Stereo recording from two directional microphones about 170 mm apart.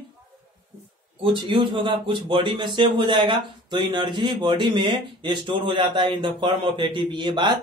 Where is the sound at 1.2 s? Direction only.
30° right (ahead or behind).